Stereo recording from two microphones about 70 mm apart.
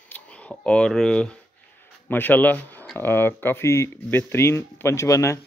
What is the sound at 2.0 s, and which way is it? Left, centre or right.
Speech, left.